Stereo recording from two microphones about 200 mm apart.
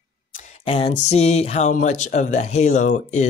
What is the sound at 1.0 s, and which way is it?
Speech, 30° left (ahead or behind).